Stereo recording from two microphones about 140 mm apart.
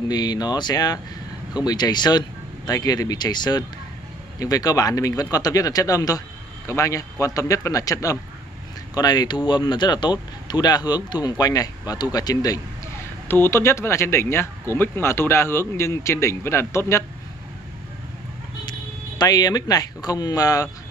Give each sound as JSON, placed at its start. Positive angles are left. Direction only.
{"t": 0.1, "sound": "speech", "side_deg": 30}
{"t": 18.7, "sound": "speech", "side_deg": 30}